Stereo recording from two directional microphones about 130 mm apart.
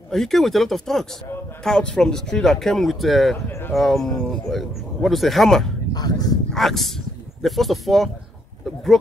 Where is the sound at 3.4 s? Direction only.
15° left (ahead or behind).